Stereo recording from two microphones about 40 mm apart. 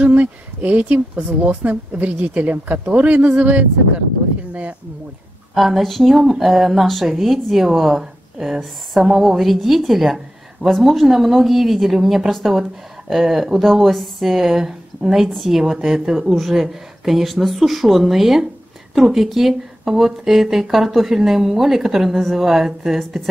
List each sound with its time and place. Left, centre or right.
0.0 s speech: right
2.9 s speech: right
5.5 s speech: centre
15.3 s speech: centre
15.6 s speech: centre